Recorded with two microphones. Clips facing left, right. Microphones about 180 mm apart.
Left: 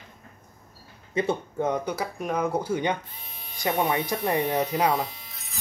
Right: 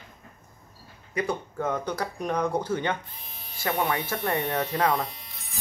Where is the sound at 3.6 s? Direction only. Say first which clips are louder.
Left 2 dB; 20° left (ahead or behind).